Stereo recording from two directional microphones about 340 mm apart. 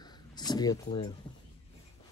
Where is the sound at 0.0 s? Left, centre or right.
Centre.